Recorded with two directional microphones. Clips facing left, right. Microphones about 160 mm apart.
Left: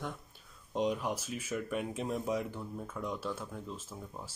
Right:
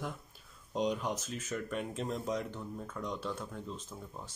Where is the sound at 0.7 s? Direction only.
5° left (ahead or behind).